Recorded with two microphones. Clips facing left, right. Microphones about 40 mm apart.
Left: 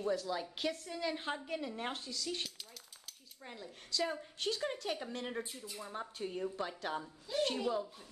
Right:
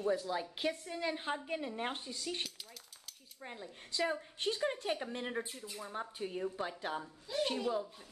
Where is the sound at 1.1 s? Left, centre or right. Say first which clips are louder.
Right 1 dB; centre.